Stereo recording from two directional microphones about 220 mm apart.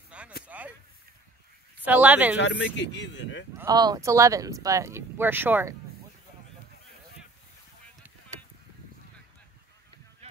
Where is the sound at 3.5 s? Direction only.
15° right (ahead or behind).